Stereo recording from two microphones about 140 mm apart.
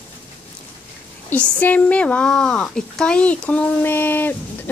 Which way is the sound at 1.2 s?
10° left (ahead or behind).